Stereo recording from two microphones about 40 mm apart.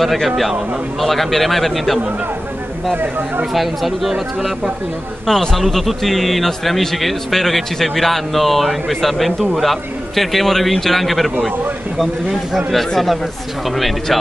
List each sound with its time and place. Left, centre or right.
0.0 s a man's voice: centre
3.0 s speech: right
3.5 s a man's voice: centre
4.1 s speech: centre
5.2 s a man's voice: centre